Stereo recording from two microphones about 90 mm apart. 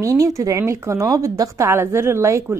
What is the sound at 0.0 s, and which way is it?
A woman's voice, 40° right (ahead or behind).